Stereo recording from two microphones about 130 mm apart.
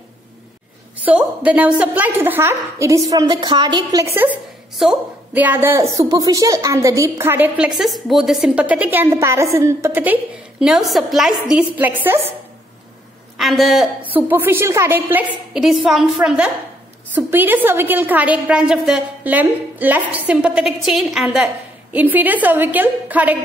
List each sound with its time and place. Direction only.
0.9 s a woman's voice: 10° right (ahead or behind); by 4.0 s 35° right (ahead or behind)
4.0 s a woman's voice: 15° right (ahead or behind)
4.8 s a woman's voice: 5° right (ahead or behind)
5.3 s a woman's voice: 15° right (ahead or behind)
10.7 s a woman's voice: centre (ahead or behind)
13.4 s a woman's voice: centre (ahead or behind)
14.0 s a woman's voice: 15° right (ahead or behind)
15.5 s a woman's voice: centre (ahead or behind)
21.9 s a woman's voice: 15° right (ahead or behind)